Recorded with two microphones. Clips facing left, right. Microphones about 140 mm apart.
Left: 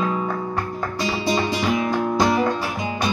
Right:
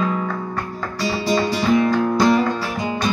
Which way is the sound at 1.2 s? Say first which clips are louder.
Right 3 dB; 20° left (ahead or behind).